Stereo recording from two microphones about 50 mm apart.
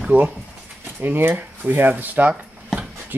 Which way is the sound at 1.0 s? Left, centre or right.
Right.